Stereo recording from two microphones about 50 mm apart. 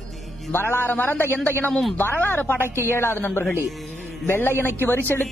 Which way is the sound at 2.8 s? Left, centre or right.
Left.